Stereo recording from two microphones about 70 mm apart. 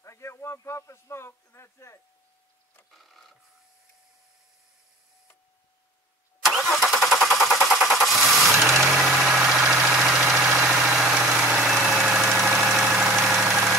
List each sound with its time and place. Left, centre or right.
0.0 s a sound: left
2.9 s printer: centre
6.4 s engine starting: centre
9.1 s vehicle: centre
11.7 s engine: centre